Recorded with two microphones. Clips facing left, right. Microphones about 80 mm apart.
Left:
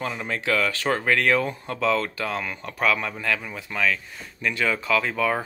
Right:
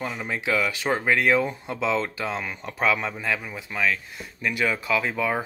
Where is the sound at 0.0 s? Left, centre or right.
Centre.